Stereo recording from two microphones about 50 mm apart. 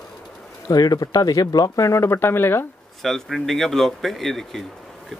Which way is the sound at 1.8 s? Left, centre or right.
Left.